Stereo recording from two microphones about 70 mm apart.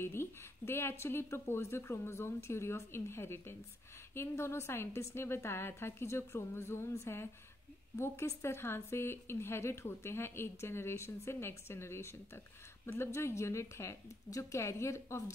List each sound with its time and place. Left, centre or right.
0.0 s a woman's voice: left